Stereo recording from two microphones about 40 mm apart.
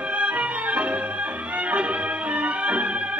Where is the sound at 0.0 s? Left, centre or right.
Right.